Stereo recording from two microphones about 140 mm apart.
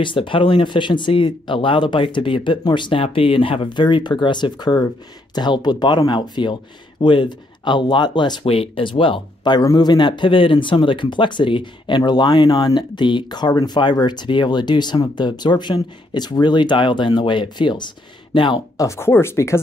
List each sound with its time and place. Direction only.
0.0 s speech: 35° left (ahead or behind)
18.9 s speech: 20° left (ahead or behind)